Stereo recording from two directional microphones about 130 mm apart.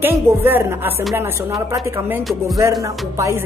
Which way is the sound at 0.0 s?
15° right (ahead or behind).